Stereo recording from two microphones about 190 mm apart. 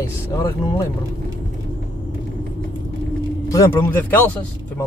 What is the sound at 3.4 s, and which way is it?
Speech, 15° left (ahead or behind).